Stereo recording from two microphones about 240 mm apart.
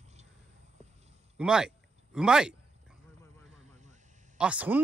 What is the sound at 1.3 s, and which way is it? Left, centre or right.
Speech, centre.